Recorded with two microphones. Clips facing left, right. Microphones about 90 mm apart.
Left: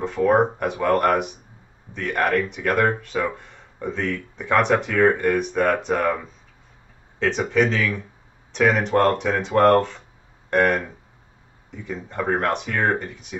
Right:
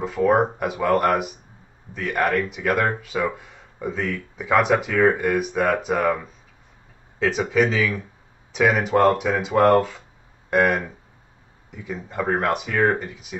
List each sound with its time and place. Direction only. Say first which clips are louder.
0.0 s speech: left 1 dB; 5° right (ahead or behind)